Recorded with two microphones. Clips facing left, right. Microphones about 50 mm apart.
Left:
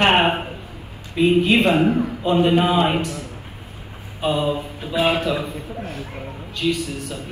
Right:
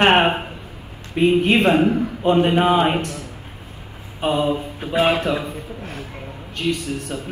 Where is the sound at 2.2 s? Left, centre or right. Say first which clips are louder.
Right 2 dB; right.